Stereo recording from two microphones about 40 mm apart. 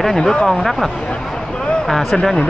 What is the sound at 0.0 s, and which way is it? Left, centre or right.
Speech, centre.